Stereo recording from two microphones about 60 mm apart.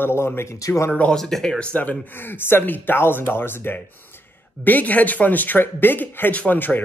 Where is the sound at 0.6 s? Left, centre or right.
Left.